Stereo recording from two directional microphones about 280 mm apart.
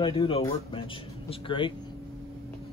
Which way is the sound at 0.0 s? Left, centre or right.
Centre.